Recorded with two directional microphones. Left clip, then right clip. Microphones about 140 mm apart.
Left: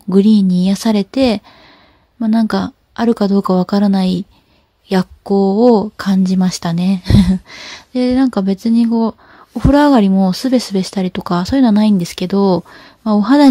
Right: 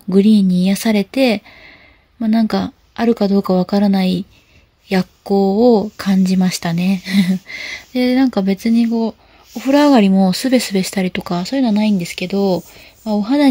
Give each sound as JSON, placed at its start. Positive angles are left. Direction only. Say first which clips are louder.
{"t": 0.1, "sound": "speech", "louder": "left 1 dB", "side_deg": 30}
{"t": 8.9, "sound": "a sound", "louder": "left 3 dB", "side_deg": 50}
{"t": 9.7, "sound": "speech", "louder": "left 1 dB", "side_deg": 25}
{"t": 11.3, "sound": "speech", "louder": "left 5 dB", "side_deg": 45}